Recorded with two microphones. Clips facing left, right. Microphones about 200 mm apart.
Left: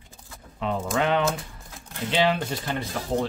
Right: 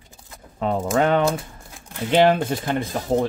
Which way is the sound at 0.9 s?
45° right (ahead or behind).